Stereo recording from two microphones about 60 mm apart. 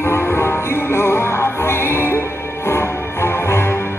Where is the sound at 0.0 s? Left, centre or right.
Left.